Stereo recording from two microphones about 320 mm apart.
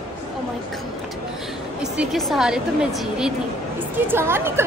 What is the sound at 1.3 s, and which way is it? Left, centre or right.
A woman's voice, centre.